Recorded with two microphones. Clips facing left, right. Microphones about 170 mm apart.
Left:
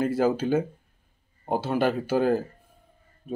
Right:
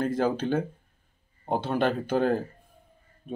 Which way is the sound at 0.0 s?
5° left (ahead or behind).